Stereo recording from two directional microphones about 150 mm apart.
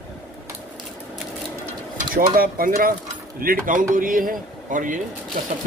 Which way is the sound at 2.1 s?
75° right (ahead or behind).